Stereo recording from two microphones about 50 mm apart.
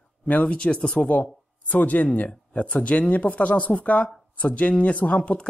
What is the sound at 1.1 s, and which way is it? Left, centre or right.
Speech, left.